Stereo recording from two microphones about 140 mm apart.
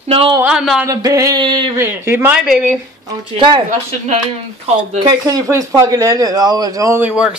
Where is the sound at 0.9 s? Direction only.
25° right (ahead or behind).